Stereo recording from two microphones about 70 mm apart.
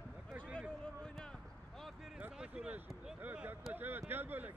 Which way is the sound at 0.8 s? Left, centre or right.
Centre.